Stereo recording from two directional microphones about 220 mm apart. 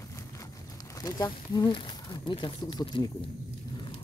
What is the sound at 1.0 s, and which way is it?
Speech, 15° left (ahead or behind).